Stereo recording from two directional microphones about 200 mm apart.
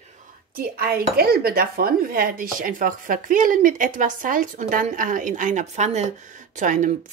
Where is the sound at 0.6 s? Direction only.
50° right (ahead or behind).